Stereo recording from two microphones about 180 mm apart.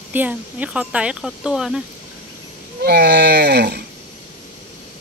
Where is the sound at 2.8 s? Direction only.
65° right (ahead or behind).